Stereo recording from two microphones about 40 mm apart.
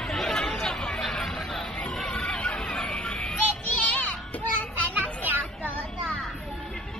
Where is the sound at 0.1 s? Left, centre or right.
Centre.